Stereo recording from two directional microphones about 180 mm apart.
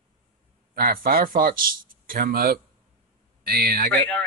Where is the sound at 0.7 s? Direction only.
55° right (ahead or behind).